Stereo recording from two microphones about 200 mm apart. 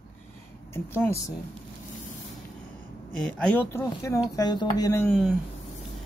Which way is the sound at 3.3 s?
10° left (ahead or behind).